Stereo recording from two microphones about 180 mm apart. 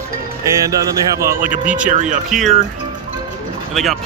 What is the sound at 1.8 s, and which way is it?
Speech, 45° right (ahead or behind).